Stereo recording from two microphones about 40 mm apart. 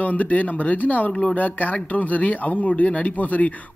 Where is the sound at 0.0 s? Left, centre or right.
Left.